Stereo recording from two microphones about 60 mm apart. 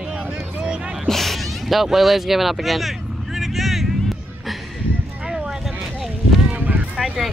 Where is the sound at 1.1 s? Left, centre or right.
Centre.